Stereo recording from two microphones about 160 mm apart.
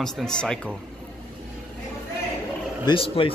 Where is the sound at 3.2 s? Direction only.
35° left (ahead or behind).